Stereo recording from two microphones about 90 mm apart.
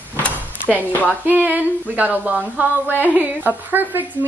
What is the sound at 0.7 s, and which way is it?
Speech, 20° left (ahead or behind).